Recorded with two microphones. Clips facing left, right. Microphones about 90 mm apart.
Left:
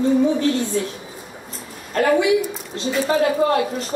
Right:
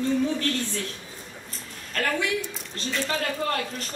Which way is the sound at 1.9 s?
20° left (ahead or behind).